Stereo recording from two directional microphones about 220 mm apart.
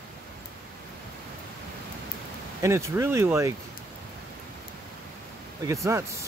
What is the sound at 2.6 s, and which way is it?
Speech, 10° right (ahead or behind).